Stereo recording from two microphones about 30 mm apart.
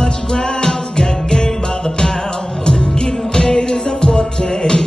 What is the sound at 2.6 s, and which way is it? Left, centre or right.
Music, left.